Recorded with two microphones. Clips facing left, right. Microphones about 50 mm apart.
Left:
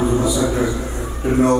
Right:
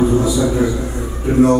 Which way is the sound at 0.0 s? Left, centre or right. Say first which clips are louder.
Right 3 dB; centre.